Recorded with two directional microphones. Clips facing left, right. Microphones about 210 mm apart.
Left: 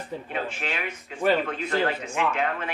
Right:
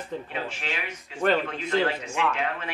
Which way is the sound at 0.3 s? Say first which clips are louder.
Left 2 dB; 50° left (ahead or behind).